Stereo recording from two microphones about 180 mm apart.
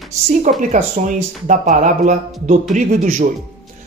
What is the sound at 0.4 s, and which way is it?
Speech, 40° right (ahead or behind).